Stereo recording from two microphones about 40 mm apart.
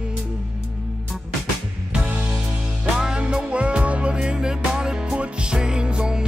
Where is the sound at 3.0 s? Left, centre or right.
Right.